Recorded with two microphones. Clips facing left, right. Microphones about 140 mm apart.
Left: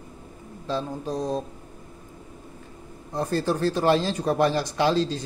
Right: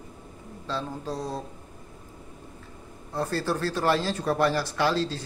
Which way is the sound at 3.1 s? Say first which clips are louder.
Left 3 dB; 20° left (ahead or behind).